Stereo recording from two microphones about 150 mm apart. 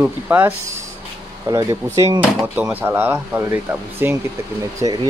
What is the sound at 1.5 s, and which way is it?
Speech, 25° right (ahead or behind).